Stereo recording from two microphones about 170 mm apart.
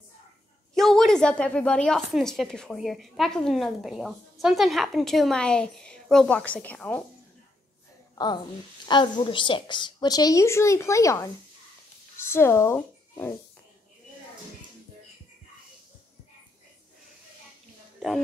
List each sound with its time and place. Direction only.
0.7 s a woman's voice: centre (ahead or behind)
8.8 s a woman's voice: 25° left (ahead or behind)